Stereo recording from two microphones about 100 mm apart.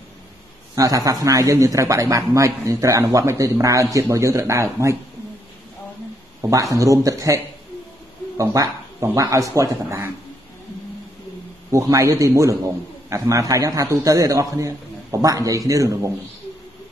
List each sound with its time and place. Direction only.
0.7 s speech: 35° right (ahead or behind)
6.5 s speech: 35° right (ahead or behind)
11.7 s speech: 30° right (ahead or behind)